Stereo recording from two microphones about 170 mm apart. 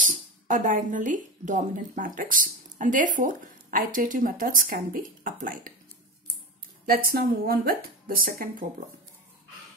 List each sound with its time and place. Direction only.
0.0 s speech: 50° right (ahead or behind)
6.9 s speech: 60° right (ahead or behind)